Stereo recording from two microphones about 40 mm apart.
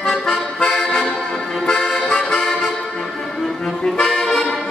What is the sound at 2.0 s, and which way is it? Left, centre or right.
Music, left.